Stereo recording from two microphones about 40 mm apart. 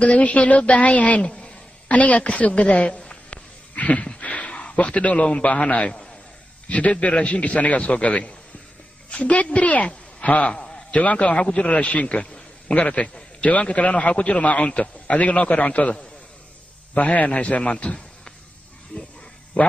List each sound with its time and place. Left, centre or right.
0.0 s a man's voice: left
1.2 s a woman's voice: left
3.1 s a sound: left
6.7 s a man's voice: left
10.5 s a sound: left
11.0 s a man's voice: left
12.7 s a man's voice: left
16.9 s a man's voice: left